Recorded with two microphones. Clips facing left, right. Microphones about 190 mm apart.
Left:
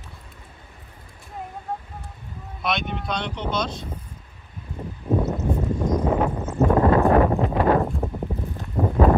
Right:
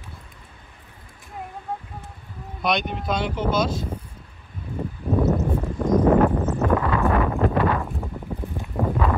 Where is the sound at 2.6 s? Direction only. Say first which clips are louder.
Right 3 dB; centre (ahead or behind).